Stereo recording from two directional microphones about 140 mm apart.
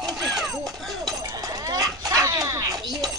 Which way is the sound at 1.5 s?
25° right (ahead or behind).